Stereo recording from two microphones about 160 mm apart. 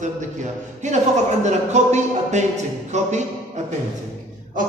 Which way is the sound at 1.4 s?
45° right (ahead or behind).